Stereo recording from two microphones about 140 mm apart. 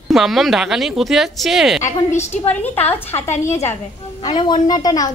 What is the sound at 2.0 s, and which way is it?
Speech, 55° left (ahead or behind).